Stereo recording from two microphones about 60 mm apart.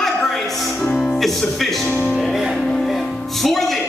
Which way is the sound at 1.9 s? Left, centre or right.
Left.